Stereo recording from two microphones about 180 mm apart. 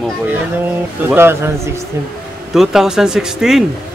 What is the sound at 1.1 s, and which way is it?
Speech, 15° right (ahead or behind).